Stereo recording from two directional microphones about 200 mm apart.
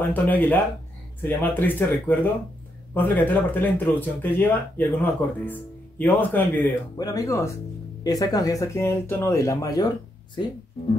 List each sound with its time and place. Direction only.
0.1 s speech: 10° left (ahead or behind)